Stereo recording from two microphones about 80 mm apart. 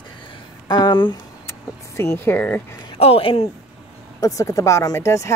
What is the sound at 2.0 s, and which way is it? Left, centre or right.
Speech, left.